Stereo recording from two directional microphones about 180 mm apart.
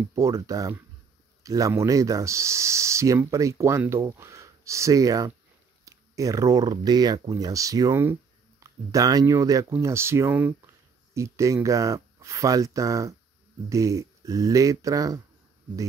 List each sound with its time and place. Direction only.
0.1 s speech: 15° right (ahead or behind)